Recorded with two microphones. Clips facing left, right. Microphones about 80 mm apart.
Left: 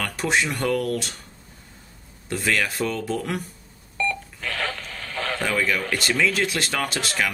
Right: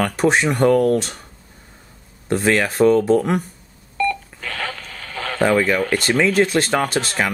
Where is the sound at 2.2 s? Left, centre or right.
Right.